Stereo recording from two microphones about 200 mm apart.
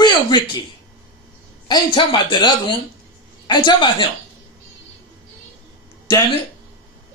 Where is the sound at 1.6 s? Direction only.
20° left (ahead or behind).